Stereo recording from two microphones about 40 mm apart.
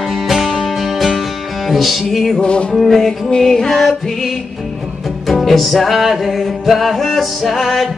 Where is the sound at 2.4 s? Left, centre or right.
Left.